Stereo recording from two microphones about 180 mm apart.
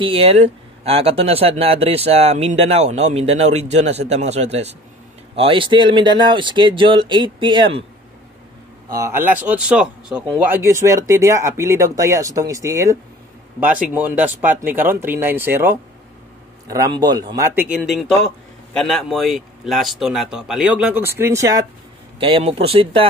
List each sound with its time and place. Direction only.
0.0 s speech: 30° right (ahead or behind)
8.9 s speech: 15° right (ahead or behind)
17.6 s a man's voice: 5° right (ahead or behind)
22.2 s speech: 30° right (ahead or behind)